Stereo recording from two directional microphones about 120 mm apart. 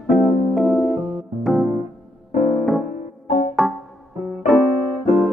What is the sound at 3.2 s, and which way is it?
Music, 70° left (ahead or behind).